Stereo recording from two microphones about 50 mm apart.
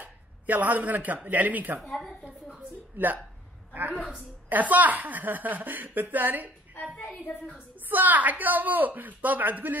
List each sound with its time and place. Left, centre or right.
0.0 s speech: right
1.9 s a woman's voice: centre
3.0 s a woman's voice: right
4.5 s a woman's voice: right
7.1 s a woman's voice: centre
7.9 s a woman's voice: right